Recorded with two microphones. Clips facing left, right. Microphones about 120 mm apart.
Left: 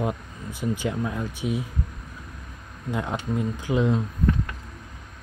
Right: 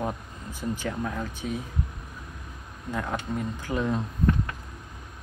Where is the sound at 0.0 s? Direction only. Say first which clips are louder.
Left 3 dB; 15° left (ahead or behind).